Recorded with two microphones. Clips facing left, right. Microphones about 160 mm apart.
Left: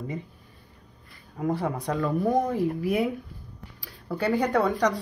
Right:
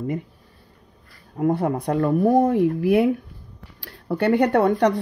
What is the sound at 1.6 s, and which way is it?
Speech, 55° right (ahead or behind).